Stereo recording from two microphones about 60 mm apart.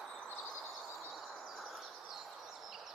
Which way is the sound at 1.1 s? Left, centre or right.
Centre.